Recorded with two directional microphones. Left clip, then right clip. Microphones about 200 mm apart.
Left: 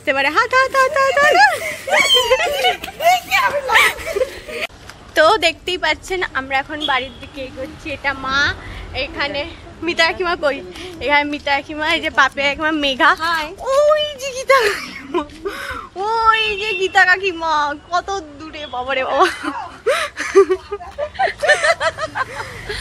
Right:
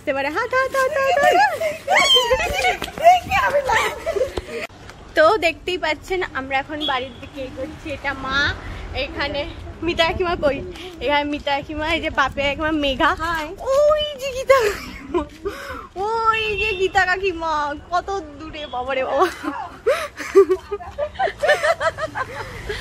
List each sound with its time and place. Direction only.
0.0 s a woman's voice: centre (ahead or behind)
1.9 s speech: 20° left (ahead or behind)
2.2 s a woman's voice: centre (ahead or behind)
3.3 s snicker: 25° right (ahead or behind)
3.7 s a woman's voice: 5° right (ahead or behind)
5.1 s a woman's voice: centre (ahead or behind)
6.9 s a woman's voice: 15° left (ahead or behind)
7.8 s a woman's voice: 30° left (ahead or behind)
9.8 s a woman's voice: 5° left (ahead or behind)
11.0 s speech: 15° left (ahead or behind)
21.4 s snicker: 5° left (ahead or behind)
21.6 s snicker: 20° right (ahead or behind)